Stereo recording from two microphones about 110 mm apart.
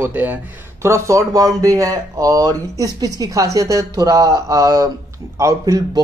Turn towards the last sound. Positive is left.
turn(degrees=-30)  # may be behind; listen again after turning